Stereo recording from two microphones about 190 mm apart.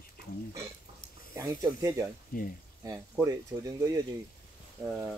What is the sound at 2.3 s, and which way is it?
Speech, 50° left (ahead or behind).